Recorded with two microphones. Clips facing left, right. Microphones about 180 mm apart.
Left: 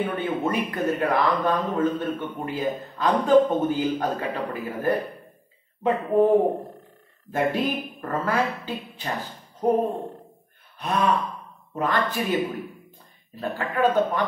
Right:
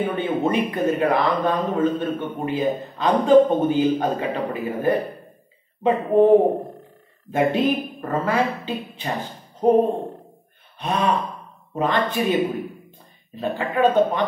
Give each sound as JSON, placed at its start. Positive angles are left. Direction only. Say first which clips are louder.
{"t": 0.1, "sound": "a woman's voice", "louder": "right 4 dB", "side_deg": -20}
{"t": 13.4, "sound": "speech", "louder": "right 3 dB", "side_deg": -20}